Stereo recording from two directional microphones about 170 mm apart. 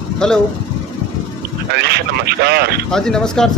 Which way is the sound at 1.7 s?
70° right (ahead or behind).